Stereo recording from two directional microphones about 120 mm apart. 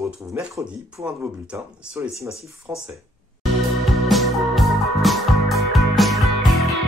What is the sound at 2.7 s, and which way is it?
Speech, 30° right (ahead or behind).